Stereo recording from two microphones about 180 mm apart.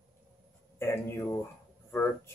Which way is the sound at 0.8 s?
15° left (ahead or behind).